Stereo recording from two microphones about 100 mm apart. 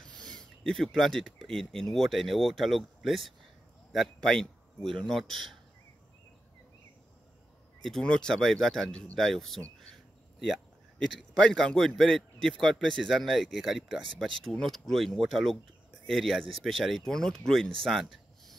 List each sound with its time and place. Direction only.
0.2 s a man's voice: 5° left (ahead or behind)
7.8 s a man's voice: 5° left (ahead or behind)